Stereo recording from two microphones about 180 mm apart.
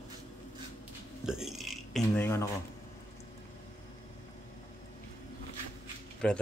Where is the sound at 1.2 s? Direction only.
5° right (ahead or behind).